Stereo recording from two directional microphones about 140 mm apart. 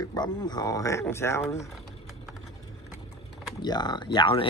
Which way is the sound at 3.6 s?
30° left (ahead or behind).